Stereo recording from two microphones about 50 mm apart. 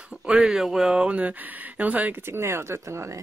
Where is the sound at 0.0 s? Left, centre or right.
Right.